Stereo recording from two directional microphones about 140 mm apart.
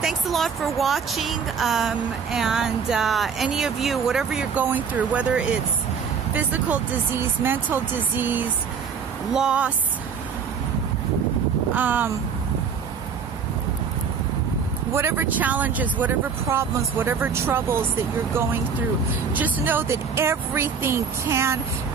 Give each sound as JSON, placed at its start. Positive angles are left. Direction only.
{"t": 0.0, "sound": "speech", "side_deg": 0}
{"t": 11.7, "sound": "speech", "side_deg": -15}
{"t": 14.9, "sound": "speech", "side_deg": -20}
{"t": 19.3, "sound": "speech", "side_deg": -10}